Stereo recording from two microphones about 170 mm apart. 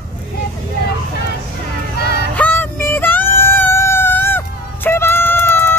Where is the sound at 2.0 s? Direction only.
70° left (ahead or behind).